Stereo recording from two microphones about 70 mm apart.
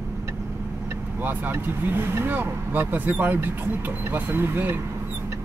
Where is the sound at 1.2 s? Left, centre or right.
Right.